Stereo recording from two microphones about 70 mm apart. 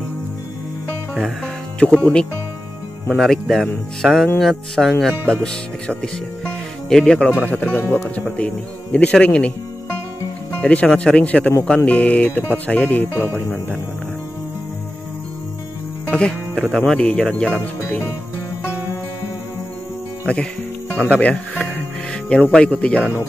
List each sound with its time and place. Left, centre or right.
1.1 s speech: centre
3.1 s speech: centre
6.4 s music: centre
7.4 s speech: left
10.6 s speech: centre
16.1 s speech: centre
17.8 s music: left
20.3 s speech: centre